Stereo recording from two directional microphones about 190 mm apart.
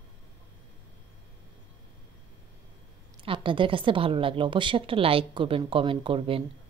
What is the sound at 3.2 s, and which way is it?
A woman's voice, 25° right (ahead or behind).